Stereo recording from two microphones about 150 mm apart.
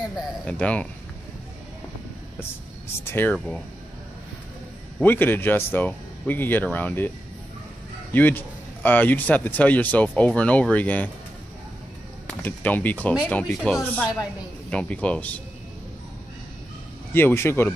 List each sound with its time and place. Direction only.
0.5 s speech: 10° left (ahead or behind)
3.1 s speech: 15° left (ahead or behind)
5.0 s speech: 15° left (ahead or behind)
8.1 s speech: 10° left (ahead or behind)
12.4 s speech: 10° left (ahead or behind)
17.1 s speech: 15° left (ahead or behind)